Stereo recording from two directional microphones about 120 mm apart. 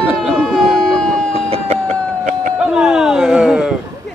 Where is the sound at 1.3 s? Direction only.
60° right (ahead or behind); by 2.5 s 80° right.